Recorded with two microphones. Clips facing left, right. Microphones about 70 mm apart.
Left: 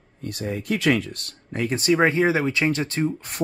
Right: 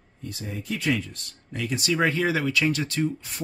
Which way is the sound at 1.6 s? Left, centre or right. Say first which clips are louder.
Left 5 dB; left.